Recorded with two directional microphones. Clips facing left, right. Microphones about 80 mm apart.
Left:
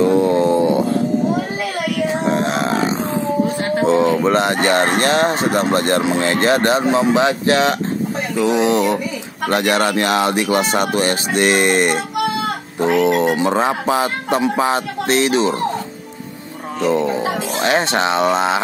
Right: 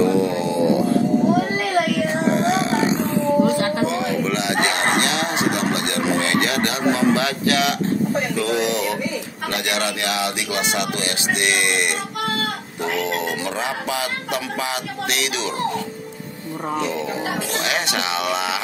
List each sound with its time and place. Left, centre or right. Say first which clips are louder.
0.3 s a sound: left 5 dB; left
2.4 s burping: even; left
3.8 s speech: left 7 dB; left
16.8 s speech: left 7 dB; left